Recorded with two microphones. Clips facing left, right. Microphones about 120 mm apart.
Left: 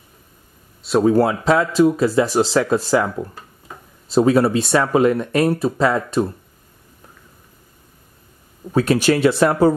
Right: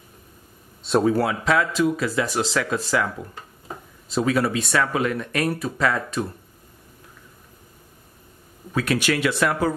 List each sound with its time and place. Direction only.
1.0 s speech: 30° left (ahead or behind)
4.1 s speech: 30° left (ahead or behind)
8.7 s speech: 30° left (ahead or behind)